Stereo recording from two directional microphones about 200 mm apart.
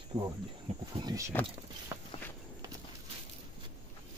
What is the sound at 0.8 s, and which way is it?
Speech, 20° right (ahead or behind).